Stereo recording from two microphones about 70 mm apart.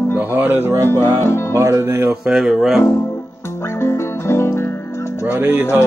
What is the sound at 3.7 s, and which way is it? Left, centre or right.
Music, left.